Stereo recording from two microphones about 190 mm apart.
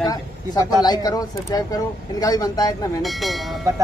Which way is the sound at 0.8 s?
20° left (ahead or behind).